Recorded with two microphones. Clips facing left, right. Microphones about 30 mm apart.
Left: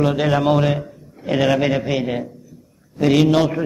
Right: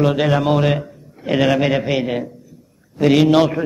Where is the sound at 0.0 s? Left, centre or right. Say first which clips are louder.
Right 1 dB; centre.